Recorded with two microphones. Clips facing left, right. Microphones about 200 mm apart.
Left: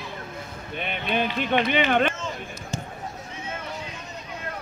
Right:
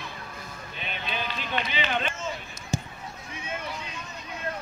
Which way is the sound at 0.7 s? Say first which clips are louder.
Left 8 dB; 55° left (ahead or behind).